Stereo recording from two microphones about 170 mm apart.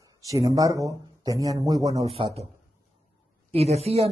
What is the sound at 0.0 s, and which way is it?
Speech, 20° right (ahead or behind).